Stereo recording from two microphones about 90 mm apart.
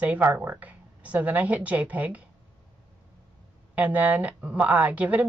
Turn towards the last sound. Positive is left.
turn(degrees=-15)  # may be behind; listen again after turning